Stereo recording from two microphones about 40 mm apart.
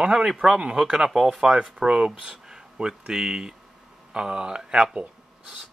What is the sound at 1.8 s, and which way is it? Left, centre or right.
Speech, right.